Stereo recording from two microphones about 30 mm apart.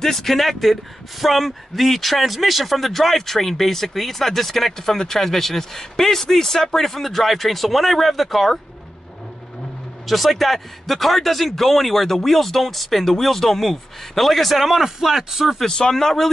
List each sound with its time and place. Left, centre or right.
0.0 s speech: centre
10.0 s speech: centre
14.5 s a man's voice: centre
15.6 s speech: left